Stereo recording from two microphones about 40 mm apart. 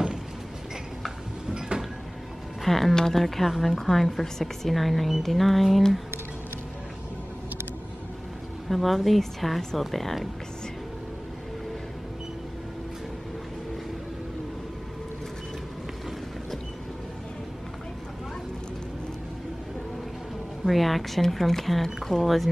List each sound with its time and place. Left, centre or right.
1.7 s vehicle: right
2.6 s speech: centre
8.6 s speech: centre
20.6 s speech: centre